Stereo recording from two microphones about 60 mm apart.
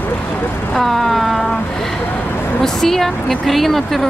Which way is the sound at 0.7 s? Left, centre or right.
Centre.